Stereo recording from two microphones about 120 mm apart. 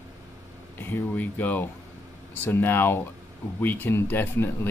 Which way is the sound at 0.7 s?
15° left (ahead or behind).